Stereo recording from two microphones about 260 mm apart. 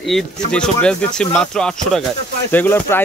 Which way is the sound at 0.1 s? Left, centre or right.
Centre.